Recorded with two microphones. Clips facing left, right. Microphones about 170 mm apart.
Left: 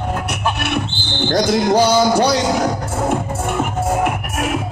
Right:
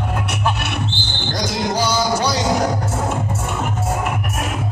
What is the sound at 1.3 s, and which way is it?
Speech, 55° left (ahead or behind).